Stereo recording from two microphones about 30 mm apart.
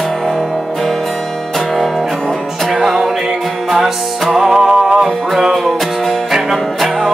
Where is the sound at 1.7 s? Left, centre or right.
Centre.